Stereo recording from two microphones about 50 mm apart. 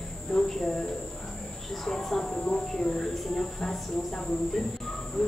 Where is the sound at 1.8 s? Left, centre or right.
Centre.